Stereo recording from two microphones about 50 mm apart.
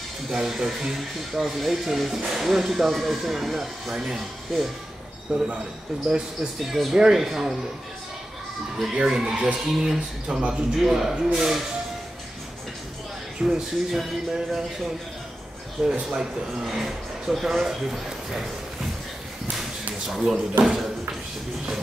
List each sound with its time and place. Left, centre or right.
0.3 s speech: centre
6.6 s speech: centre
8.9 s speech: centre
10.8 s speech: centre
13.4 s speech: centre
15.8 s speech: centre
20.1 s speech: centre